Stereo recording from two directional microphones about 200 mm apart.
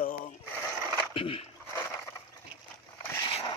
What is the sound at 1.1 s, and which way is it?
Speech, 25° left (ahead or behind).